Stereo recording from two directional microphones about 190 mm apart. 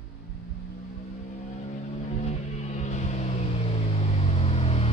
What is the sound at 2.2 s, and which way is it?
Music, 35° left (ahead or behind).